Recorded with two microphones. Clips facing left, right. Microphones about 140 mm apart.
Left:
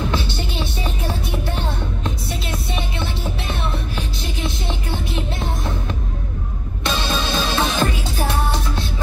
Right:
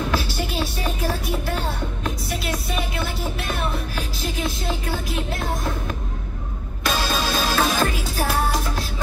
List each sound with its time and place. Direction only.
0.1 s music: 25° left (ahead or behind)
6.8 s music: 25° left (ahead or behind)